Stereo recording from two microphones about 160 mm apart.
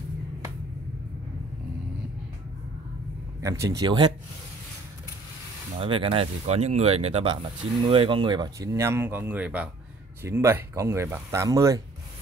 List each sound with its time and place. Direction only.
3.3 s speech: 20° right (ahead or behind)
5.8 s speech: 35° right (ahead or behind)